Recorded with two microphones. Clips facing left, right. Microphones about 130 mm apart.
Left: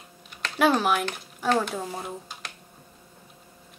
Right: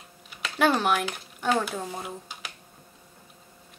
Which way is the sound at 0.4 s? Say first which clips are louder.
Left 1 dB; centre (ahead or behind).